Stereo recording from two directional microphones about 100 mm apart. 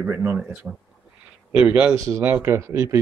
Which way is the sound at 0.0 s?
20° right (ahead or behind).